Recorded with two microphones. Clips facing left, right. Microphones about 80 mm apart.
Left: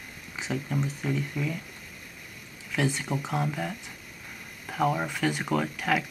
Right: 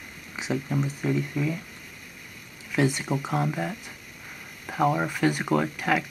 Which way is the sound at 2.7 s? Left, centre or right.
Centre.